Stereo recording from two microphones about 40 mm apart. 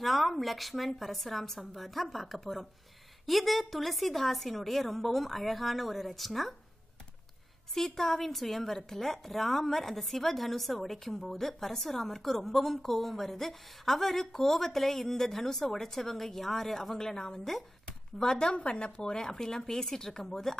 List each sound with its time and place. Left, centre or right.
0.0 s a woman's voice: centre
7.7 s a woman's voice: centre
17.8 s a woman's voice: left